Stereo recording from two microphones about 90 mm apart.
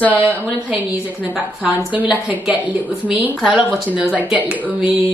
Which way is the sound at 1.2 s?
15° right (ahead or behind).